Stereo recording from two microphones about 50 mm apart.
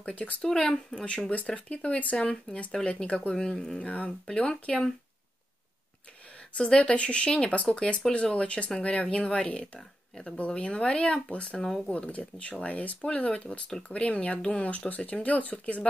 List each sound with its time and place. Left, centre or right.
0.0 s speech: left
0.4 s speech: centre
3.8 s speech: left
6.5 s speech: left